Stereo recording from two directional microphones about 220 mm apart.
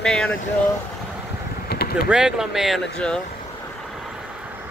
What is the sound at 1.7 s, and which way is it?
Vehicle, 45° left (ahead or behind).